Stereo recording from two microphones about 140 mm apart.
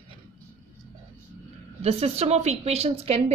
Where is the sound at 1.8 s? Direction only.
45° right (ahead or behind).